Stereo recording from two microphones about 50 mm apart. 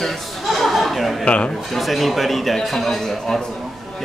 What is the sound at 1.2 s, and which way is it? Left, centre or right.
Speech, left.